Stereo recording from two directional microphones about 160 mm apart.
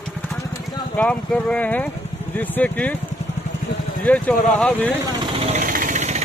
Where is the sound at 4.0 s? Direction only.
5° left (ahead or behind).